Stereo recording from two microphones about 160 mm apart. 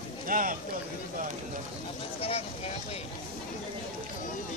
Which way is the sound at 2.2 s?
40° left (ahead or behind).